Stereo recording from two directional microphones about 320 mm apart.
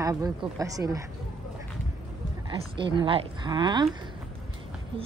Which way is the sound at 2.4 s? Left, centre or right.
Centre.